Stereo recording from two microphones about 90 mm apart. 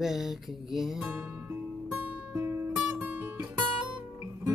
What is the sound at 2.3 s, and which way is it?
Music, 25° right (ahead or behind).